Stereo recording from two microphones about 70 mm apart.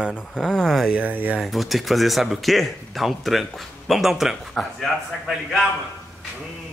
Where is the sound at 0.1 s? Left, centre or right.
Centre.